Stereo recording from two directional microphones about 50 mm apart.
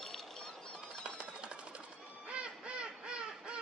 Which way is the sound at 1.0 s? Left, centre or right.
Centre.